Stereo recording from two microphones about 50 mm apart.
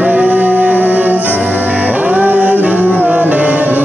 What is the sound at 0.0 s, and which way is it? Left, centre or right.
Music, right.